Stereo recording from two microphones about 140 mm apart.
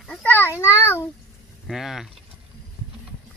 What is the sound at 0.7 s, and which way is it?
Speech, 20° left (ahead or behind).